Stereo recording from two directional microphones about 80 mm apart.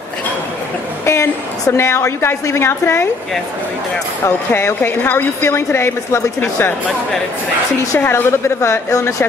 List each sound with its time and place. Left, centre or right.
1.0 s a sound: left
1.8 s a woman's voice: left
4.6 s a woman's voice: left
8.1 s a woman's voice: left